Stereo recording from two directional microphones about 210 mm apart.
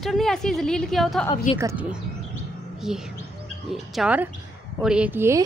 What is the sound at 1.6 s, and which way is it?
Speech, 5° right (ahead or behind).